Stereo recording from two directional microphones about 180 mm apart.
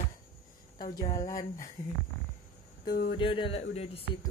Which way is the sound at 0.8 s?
55° left (ahead or behind).